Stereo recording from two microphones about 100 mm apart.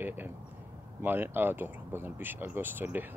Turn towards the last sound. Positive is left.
turn(degrees=-20)  # may be behind; listen again after turning